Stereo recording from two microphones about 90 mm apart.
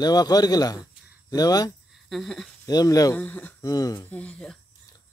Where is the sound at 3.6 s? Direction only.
45° left (ahead or behind).